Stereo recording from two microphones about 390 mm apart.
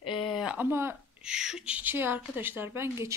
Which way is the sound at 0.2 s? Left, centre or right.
Centre.